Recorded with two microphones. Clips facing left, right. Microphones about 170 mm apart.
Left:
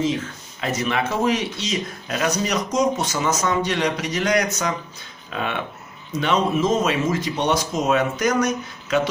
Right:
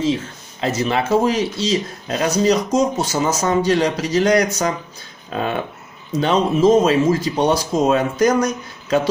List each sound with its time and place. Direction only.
0.0 s speech: 30° right (ahead or behind)